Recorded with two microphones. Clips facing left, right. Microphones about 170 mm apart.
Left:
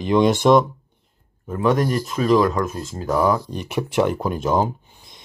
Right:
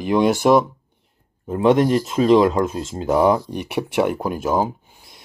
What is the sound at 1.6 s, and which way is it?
Speech, 25° right (ahead or behind).